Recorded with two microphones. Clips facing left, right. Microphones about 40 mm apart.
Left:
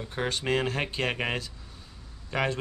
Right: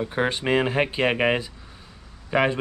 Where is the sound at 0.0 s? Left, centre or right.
Right.